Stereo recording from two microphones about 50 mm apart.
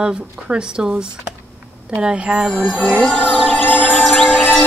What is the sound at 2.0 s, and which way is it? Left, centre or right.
Speech, centre.